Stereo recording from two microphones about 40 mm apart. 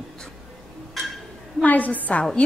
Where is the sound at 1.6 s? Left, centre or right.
Left.